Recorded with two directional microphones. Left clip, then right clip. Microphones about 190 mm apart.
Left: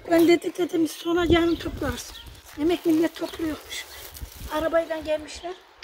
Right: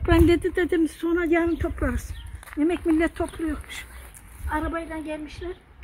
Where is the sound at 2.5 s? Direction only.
15° left (ahead or behind).